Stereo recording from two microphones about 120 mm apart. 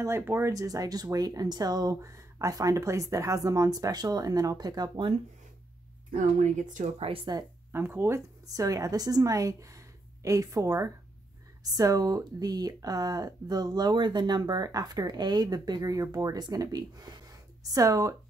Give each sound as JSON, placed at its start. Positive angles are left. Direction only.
{"t": 0.0, "sound": "speech", "side_deg": -20}
{"t": 6.1, "sound": "speech", "side_deg": -90}
{"t": 7.3, "sound": "speech", "side_deg": -35}
{"t": 7.7, "sound": "a woman's voice", "side_deg": -20}